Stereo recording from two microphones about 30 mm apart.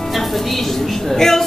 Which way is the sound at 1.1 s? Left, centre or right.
Centre.